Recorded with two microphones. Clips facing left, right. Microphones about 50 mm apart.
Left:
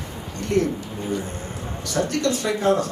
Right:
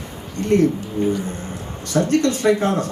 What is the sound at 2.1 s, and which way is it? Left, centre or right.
Speech, right.